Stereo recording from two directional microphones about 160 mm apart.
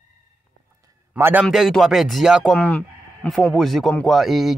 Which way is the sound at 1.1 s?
10° right (ahead or behind).